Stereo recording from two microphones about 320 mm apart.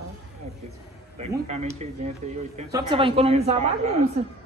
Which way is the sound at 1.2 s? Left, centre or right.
Right.